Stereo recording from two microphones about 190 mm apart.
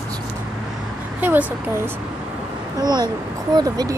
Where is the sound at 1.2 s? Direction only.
10° right (ahead or behind).